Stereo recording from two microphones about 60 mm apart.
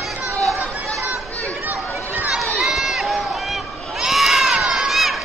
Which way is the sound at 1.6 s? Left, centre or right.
Right.